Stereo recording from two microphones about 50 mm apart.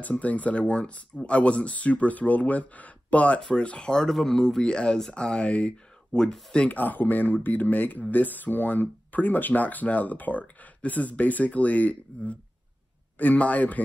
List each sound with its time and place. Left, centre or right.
0.0 s speech: left
6.7 s speech: left